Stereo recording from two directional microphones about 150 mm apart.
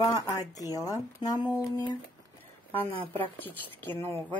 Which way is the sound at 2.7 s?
10° left (ahead or behind).